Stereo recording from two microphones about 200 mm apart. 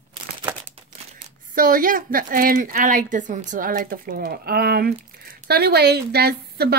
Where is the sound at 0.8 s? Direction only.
30° right (ahead or behind).